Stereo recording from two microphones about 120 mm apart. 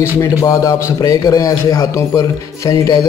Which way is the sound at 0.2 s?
25° left (ahead or behind).